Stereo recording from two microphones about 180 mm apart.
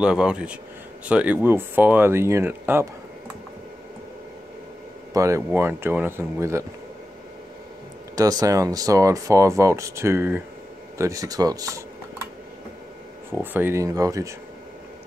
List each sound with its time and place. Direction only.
0.0 s speech: 5° right (ahead or behind)
5.1 s speech: 15° right (ahead or behind)
8.2 s speech: 20° right (ahead or behind)
13.3 s speech: 10° right (ahead or behind)